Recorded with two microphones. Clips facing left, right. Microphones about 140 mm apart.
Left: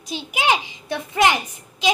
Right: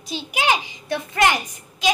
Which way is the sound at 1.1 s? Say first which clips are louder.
Left 1 dB; 5° left (ahead or behind).